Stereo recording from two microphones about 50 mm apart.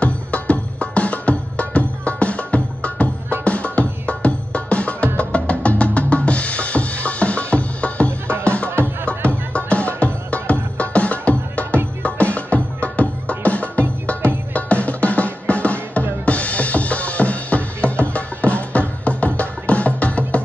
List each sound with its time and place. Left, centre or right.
0.0 s music: left
5.3 s drum: left
8.6 s music: right
9.5 s music: left